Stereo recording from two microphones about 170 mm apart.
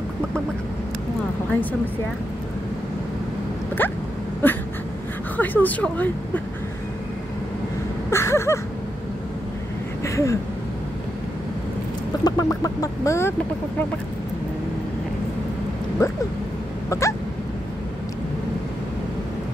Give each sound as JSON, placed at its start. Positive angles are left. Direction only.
{"t": 1.5, "sound": "speech", "side_deg": 10}
{"t": 4.4, "sound": "dog", "side_deg": 10}
{"t": 5.4, "sound": "speech", "side_deg": 10}
{"t": 8.1, "sound": "speech", "side_deg": 15}
{"t": 10.0, "sound": "speech", "side_deg": 15}
{"t": 12.3, "sound": "chicken", "side_deg": 20}
{"t": 16.0, "sound": "speech", "side_deg": 20}